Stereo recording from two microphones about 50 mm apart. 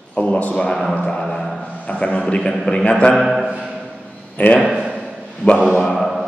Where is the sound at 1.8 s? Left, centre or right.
Left.